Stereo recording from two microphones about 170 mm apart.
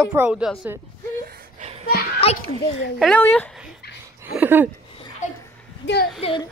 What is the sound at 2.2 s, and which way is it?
Speech, 35° left (ahead or behind).